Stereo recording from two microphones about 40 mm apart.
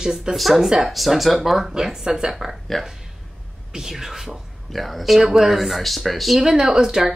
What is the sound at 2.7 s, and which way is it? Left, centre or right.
Speech, centre.